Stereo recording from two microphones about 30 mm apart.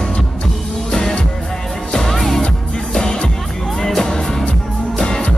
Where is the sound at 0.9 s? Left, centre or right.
Centre.